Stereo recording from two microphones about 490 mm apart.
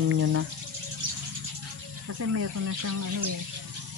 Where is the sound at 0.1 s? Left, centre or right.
Right.